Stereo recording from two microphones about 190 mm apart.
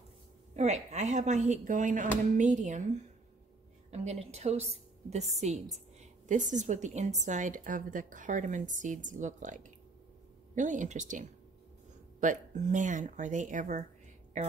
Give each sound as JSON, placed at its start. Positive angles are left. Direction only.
{"t": 0.6, "sound": "a woman's voice", "side_deg": -35}
{"t": 3.9, "sound": "a woman's voice", "side_deg": -35}